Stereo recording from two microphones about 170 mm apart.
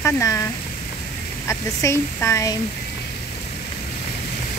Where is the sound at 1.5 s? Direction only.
15° left (ahead or behind).